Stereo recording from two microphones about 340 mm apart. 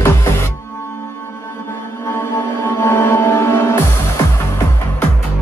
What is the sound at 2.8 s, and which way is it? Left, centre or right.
Music, centre.